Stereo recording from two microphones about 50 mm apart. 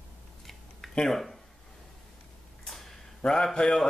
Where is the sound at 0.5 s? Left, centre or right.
Centre.